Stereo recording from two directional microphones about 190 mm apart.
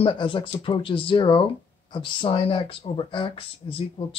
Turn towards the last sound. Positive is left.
turn(degrees=25)  # may be behind; listen again after turning